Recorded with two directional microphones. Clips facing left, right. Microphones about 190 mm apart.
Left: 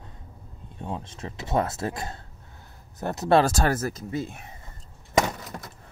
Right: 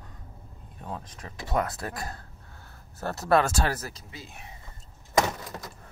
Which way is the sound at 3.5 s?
45° left (ahead or behind).